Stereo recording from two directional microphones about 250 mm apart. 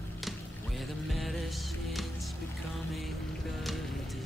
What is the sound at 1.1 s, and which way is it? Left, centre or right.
Music, centre.